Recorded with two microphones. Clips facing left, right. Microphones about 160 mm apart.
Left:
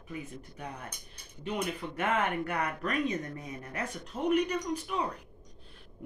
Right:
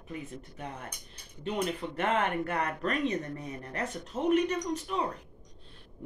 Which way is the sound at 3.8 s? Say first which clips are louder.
Right 2 dB; centre (ahead or behind).